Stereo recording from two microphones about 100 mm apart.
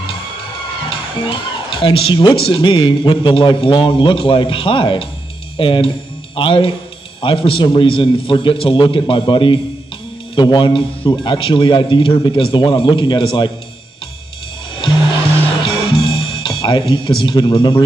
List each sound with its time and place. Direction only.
0.8 s a man's voice: 55° left (ahead or behind)
15.6 s music: 55° left (ahead or behind)
17.2 s a man's voice: 50° left (ahead or behind)